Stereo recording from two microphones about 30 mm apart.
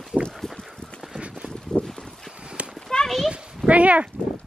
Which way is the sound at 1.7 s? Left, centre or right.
Left.